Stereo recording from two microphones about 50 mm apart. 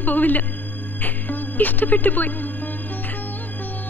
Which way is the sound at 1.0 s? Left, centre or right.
Left.